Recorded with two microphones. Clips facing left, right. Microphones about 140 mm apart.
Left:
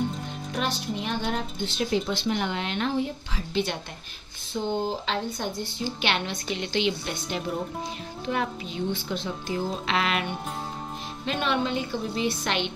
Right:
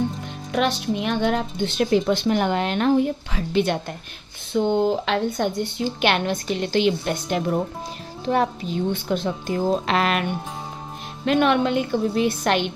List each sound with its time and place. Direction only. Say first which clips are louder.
0.6 s a woman's voice: right 8 dB; 70° right (ahead or behind); by 7.6 s 55° right (ahead or behind)
8.3 s a woman's voice: right 7 dB; 40° right (ahead or behind)
11.2 s a woman's voice: right 8 dB; 60° right (ahead or behind)